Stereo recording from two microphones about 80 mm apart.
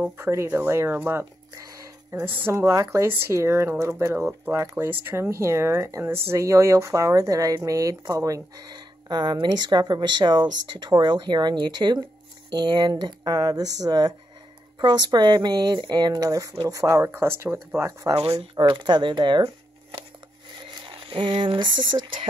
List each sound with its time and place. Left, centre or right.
0.2 s speech: right
1.5 s a sound: right
2.2 s speech: right
8.7 s speech: right
12.4 s speech: right
16.8 s speech: right
18.6 s speech: right
20.8 s speech: right